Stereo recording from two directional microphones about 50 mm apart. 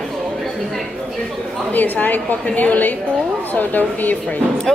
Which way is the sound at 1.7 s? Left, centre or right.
Left.